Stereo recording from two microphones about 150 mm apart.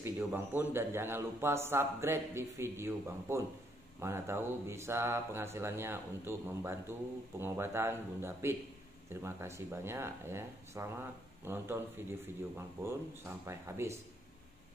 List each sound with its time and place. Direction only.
0.2 s a man's voice: 10° right (ahead or behind)